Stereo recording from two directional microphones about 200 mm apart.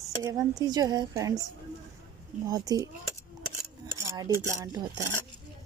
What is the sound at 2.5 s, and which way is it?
Speech, 20° right (ahead or behind).